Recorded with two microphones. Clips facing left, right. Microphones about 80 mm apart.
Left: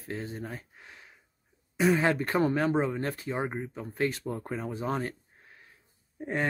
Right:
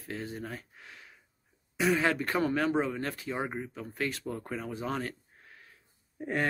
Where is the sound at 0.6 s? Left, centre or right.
Left.